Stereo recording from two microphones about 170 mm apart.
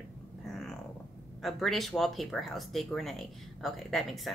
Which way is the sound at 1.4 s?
Centre (ahead or behind).